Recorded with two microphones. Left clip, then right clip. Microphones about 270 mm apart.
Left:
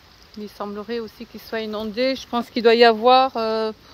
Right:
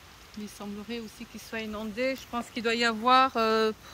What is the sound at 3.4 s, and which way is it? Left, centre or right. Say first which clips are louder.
Speech: left 3 dB; centre.